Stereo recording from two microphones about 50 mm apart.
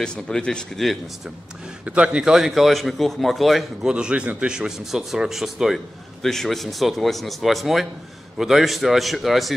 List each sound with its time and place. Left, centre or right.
0.0 s speech: centre
1.9 s a man's voice: right
2.3 s a man's voice: centre
3.8 s a man's voice: centre
6.2 s a man's voice: centre